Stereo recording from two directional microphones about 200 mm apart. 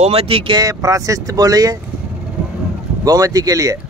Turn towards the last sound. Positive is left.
turn(degrees=-15)  # may be behind; listen again after turning